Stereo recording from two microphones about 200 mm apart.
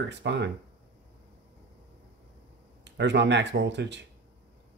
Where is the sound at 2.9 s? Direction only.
60° right (ahead or behind).